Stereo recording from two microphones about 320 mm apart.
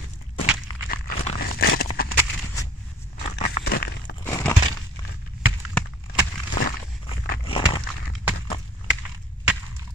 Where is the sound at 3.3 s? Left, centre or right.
Left.